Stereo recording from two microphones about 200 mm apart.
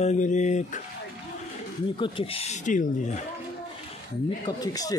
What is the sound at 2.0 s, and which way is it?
Speech, 25° left (ahead or behind).